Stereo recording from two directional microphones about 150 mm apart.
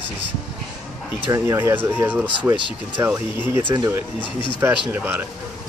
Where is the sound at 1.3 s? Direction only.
20° right (ahead or behind).